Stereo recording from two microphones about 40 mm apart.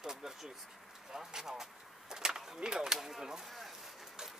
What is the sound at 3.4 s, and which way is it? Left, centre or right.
Vehicle, centre.